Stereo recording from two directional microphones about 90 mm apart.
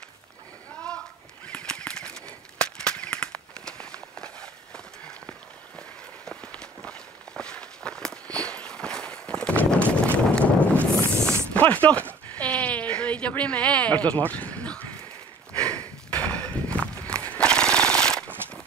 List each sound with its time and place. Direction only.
1.5 s bird: 10° left (ahead or behind)
6.2 s walk: 10° left (ahead or behind)
11.6 s chopping: 15° left (ahead or behind)
12.1 s a sound: 15° left (ahead or behind)
15.5 s walk: 15° left (ahead or behind)
17.3 s jackhammer: 10° left (ahead or behind)